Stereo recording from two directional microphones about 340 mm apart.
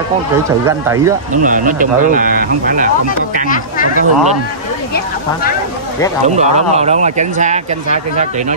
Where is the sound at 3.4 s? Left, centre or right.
Left.